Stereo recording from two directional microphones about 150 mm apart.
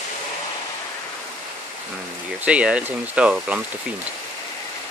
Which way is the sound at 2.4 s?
10° right (ahead or behind).